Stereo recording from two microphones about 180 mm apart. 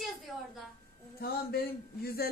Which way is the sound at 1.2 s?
60° left (ahead or behind).